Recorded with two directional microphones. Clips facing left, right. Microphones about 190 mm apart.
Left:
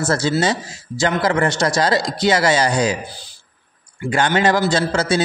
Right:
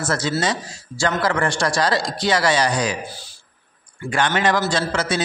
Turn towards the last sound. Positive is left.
turn(degrees=30)  # may be behind; listen again after turning